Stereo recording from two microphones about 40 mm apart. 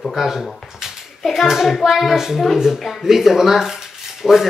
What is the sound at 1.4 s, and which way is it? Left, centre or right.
Speech, centre.